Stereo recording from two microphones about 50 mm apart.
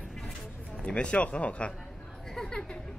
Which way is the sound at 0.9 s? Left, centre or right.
Left.